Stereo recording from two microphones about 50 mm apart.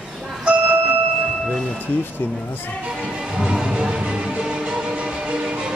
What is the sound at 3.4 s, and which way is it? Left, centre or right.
Music, centre.